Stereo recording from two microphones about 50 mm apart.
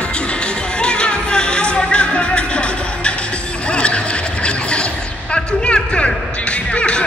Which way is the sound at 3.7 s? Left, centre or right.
Left.